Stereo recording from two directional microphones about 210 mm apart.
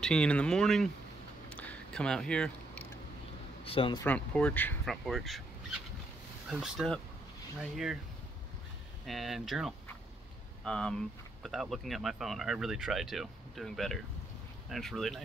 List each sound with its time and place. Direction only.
0.0 s speech: 5° left (ahead or behind)
1.5 s a sound: 5° left (ahead or behind)
3.6 s speech: 25° left (ahead or behind)
4.0 s speech: 5° left (ahead or behind)
6.5 s speech: centre (ahead or behind)
9.0 s speech: centre (ahead or behind)